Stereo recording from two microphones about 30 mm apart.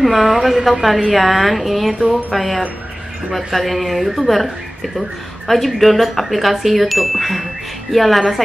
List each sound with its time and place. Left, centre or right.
0.0 s a woman's voice: centre